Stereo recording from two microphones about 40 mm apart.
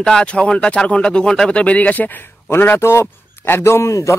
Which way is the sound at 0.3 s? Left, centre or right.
Left.